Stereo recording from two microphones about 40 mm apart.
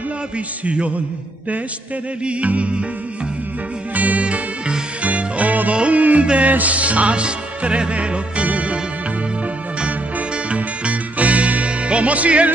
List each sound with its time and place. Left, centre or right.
0.7 s music: right
2.2 s music: right
3.9 s music: right
9.8 s music: right